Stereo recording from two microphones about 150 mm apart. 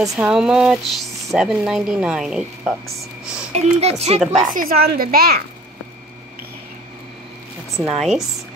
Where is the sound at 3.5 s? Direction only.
45° right (ahead or behind).